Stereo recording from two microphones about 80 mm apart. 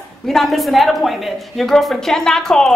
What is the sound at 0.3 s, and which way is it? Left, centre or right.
A man's voice, centre.